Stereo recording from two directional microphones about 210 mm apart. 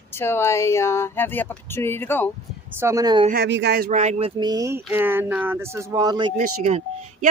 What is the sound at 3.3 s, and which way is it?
Speech, 55° right (ahead or behind).